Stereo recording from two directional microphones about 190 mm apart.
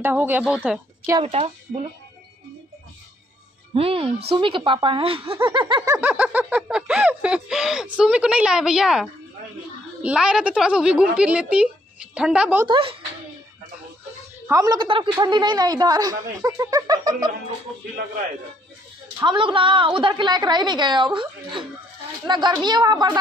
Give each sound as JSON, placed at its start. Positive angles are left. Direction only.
{"t": 0.0, "sound": "a woman's voice", "side_deg": -10}
{"t": 1.2, "sound": "a woman's voice", "side_deg": -30}
{"t": 3.7, "sound": "a woman's voice", "side_deg": -30}
{"t": 5.9, "sound": "snicker", "side_deg": -5}
{"t": 12.6, "sound": "a woman's voice", "side_deg": -25}
{"t": 14.5, "sound": "a woman's voice", "side_deg": -20}
{"t": 19.1, "sound": "a woman's voice", "side_deg": -25}